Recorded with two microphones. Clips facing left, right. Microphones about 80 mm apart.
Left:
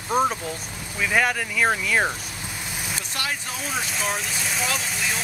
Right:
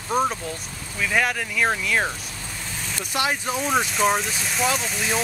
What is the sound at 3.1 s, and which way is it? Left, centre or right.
Speech, right.